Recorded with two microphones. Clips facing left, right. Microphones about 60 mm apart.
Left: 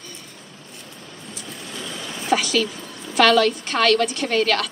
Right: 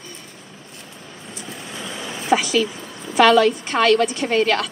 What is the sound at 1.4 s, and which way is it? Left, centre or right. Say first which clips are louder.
Speech: right 2 dB; centre.